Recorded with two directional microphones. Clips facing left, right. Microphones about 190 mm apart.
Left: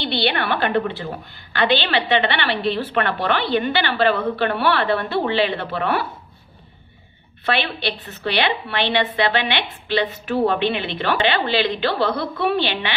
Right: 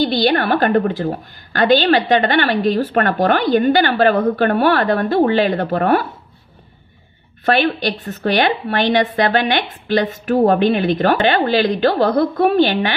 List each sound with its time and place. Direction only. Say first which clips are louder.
0.0 s a woman's voice: right 7 dB; 40° right (ahead or behind)
7.4 s a woman's voice: right 7 dB; 45° right (ahead or behind)